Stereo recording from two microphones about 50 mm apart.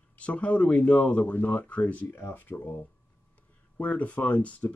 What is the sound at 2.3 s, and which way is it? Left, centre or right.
Speech, left.